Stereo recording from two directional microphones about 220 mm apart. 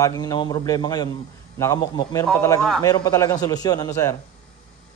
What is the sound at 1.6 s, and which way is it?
Speech, 15° left (ahead or behind).